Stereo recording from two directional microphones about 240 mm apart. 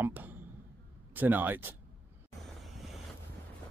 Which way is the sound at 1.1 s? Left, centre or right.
Centre.